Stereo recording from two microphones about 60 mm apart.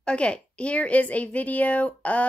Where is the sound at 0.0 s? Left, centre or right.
Centre.